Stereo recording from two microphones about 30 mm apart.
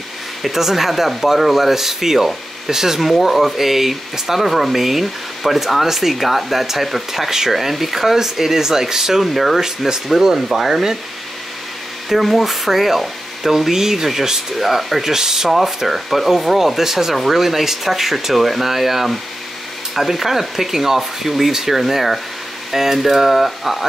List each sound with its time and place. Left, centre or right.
0.4 s speech: centre
3.1 s speech: centre
7.2 s speech: centre
7.5 s speech: centre
9.3 s speech: centre
9.6 s speech: centre
12.1 s speech: centre
15.1 s speech: centre
15.5 s speech: centre